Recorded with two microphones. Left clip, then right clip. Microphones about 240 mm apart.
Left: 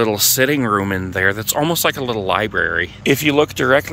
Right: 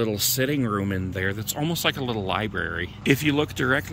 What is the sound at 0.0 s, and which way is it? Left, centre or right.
Speech, centre.